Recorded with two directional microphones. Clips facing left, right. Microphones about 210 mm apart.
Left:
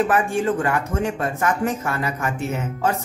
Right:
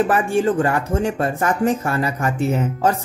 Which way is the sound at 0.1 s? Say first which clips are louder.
Right 3 dB; 35° right (ahead or behind).